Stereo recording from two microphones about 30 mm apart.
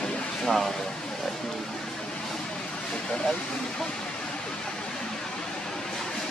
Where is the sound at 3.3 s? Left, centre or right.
Centre.